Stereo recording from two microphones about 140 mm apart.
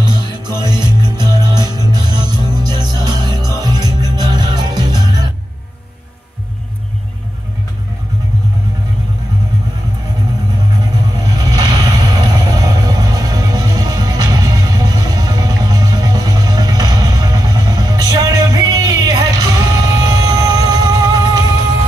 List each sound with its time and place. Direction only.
0.0 s music: 30° right (ahead or behind)
11.2 s music: 30° right (ahead or behind)